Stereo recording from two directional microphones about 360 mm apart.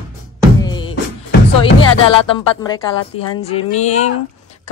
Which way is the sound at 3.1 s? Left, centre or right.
Left.